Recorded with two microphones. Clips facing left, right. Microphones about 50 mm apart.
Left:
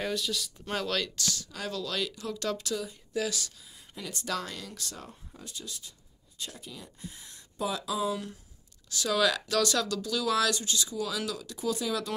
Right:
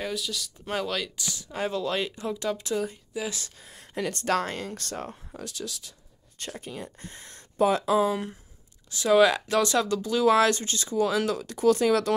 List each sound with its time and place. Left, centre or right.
0.0 s speech: centre
1.5 s speech: right
2.7 s speech: right
3.3 s speech: right
3.5 s speech: right
5.4 s speech: right
6.3 s speech: right